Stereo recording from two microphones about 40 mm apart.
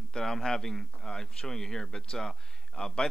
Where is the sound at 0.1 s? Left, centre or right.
Centre.